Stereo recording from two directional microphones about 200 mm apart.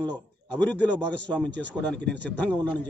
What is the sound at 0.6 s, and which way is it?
A man's voice, 10° left (ahead or behind).